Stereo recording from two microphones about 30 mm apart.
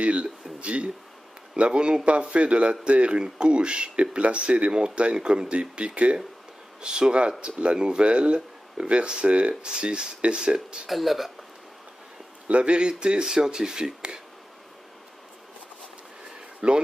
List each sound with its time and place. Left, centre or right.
0.0 s a sound: right
1.6 s speech: right
6.8 s speech: right
10.9 s speech: centre
12.4 s speech: right
13.7 s speech: centre
16.6 s speech: right